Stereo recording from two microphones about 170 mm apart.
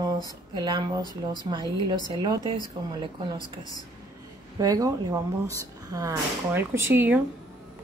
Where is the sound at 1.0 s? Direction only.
25° left (ahead or behind).